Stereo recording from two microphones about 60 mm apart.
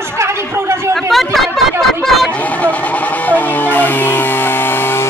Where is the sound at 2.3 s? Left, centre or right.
Left.